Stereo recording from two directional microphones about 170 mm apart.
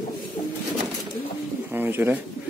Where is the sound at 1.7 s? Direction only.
10° right (ahead or behind).